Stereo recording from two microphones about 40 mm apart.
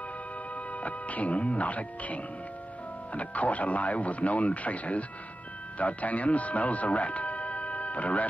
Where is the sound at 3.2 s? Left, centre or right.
Left.